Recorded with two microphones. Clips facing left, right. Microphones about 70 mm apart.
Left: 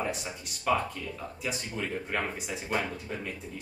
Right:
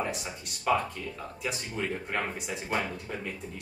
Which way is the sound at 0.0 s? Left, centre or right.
Centre.